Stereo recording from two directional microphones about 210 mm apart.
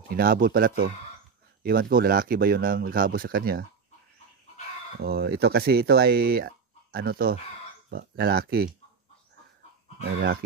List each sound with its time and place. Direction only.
0.1 s speech: 45° right (ahead or behind)
5.0 s speech: 50° right (ahead or behind)